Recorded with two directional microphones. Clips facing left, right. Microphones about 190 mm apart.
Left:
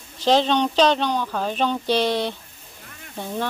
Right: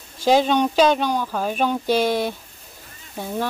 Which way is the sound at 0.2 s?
10° right (ahead or behind).